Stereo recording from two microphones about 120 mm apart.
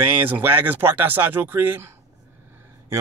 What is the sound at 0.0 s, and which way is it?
Speech, 15° right (ahead or behind).